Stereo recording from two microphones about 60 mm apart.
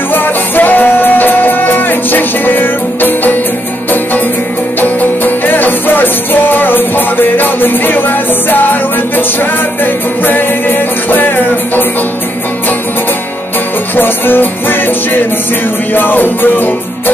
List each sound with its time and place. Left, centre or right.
0.1 s music: left
4.7 s music: left
13.9 s music: left